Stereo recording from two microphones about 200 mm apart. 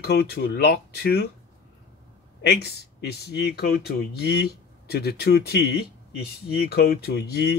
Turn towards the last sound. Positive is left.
turn(degrees=55)  # may be behind; listen again after turning